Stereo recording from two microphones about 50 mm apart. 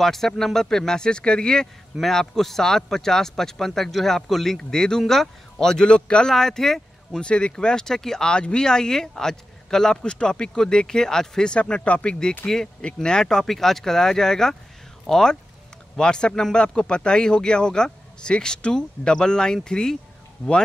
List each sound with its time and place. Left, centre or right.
0.0 s speech: centre
2.0 s speech: centre
7.2 s speech: centre